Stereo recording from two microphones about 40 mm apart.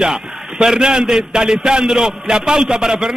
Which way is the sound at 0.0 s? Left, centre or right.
Centre.